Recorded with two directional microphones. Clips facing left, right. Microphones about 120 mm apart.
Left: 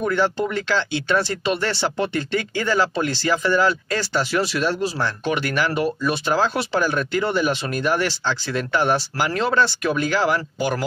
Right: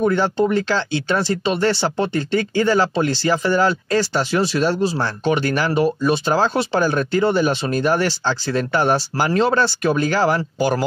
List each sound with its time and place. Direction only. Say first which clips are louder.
0.0 s speech: right 4 dB; 30° right (ahead or behind)